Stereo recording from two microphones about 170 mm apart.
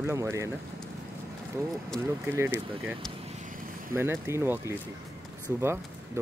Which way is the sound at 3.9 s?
15° right (ahead or behind).